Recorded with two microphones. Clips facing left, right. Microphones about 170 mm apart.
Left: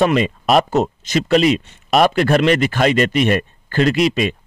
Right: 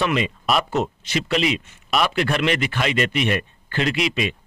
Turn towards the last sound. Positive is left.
turn(degrees=40)  # may be behind; listen again after turning